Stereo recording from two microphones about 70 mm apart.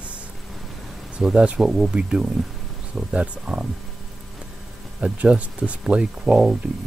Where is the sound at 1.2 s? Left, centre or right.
Centre.